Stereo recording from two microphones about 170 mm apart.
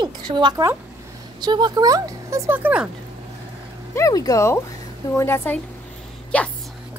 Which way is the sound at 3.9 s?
20° left (ahead or behind).